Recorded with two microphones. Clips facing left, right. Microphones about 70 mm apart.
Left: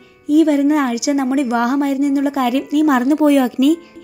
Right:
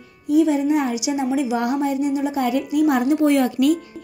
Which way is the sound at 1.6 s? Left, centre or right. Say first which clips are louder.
Left 5 dB; left.